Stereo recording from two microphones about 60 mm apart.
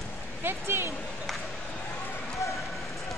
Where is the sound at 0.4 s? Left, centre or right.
Right.